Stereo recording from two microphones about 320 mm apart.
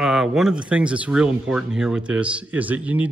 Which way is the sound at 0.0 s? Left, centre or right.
Centre.